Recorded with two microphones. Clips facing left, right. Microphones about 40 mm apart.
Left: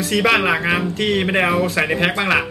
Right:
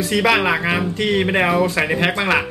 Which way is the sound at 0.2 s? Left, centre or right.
Centre.